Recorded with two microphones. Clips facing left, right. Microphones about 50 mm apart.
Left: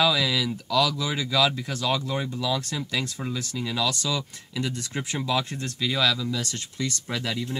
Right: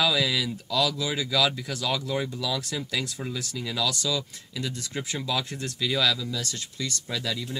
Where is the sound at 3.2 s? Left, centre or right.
Centre.